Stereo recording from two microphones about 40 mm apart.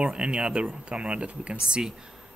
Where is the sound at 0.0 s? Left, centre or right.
Right.